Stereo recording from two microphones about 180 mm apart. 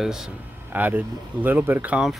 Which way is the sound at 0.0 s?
Centre (ahead or behind).